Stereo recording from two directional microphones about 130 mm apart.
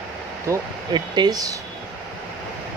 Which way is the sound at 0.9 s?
35° right (ahead or behind).